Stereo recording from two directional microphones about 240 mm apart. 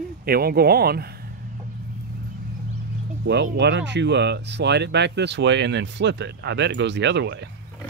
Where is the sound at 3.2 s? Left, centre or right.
Right.